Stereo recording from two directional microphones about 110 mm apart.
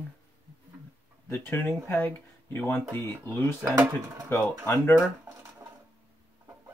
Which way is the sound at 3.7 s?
15° right (ahead or behind).